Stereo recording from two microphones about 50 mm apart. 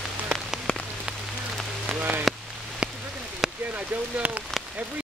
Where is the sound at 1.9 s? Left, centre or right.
Right.